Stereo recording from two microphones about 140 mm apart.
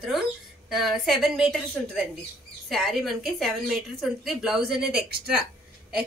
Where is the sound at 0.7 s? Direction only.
Centre (ahead or behind).